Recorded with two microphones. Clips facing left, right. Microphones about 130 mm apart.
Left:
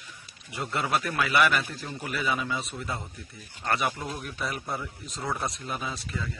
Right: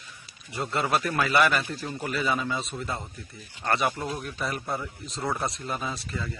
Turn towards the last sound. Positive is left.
turn(degrees=0)  # may be behind; listen again after turning